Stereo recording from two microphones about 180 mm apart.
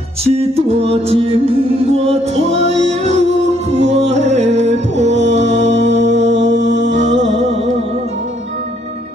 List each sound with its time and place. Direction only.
0.2 s music: 35° right (ahead or behind)
6.1 s mantra: 75° right (ahead or behind)
6.4 s music: 40° right (ahead or behind)